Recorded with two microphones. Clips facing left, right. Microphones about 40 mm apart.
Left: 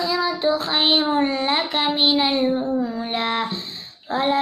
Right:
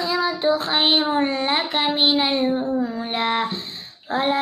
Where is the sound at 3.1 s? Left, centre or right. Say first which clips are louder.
Right 2 dB; right.